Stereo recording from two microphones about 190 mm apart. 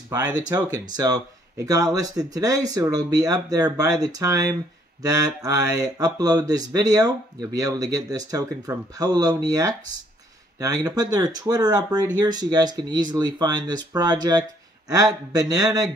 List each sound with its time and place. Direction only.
0.1 s speech: 20° right (ahead or behind)